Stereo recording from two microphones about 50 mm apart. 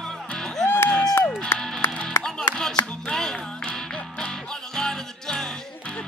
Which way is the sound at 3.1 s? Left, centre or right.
Centre.